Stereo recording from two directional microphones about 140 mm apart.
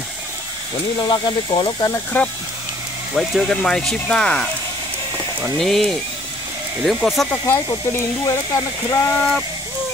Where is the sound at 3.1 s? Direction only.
Centre (ahead or behind).